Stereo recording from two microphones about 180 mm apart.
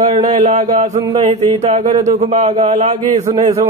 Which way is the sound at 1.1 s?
25° right (ahead or behind).